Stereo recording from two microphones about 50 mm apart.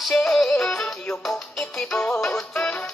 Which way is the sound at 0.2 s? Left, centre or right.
Centre.